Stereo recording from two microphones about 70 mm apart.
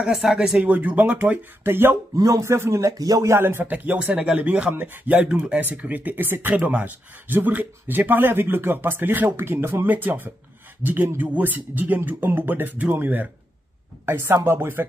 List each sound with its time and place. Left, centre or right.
0.0 s speech: centre
0.6 s speech: right
1.6 s a woman's voice: right
2.1 s speech: right
3.3 s a woman's voice: right
3.7 s speech: right
9.8 s a woman's voice: right